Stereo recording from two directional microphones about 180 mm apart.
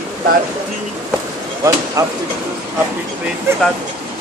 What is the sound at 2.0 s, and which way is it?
Speech, 15° right (ahead or behind).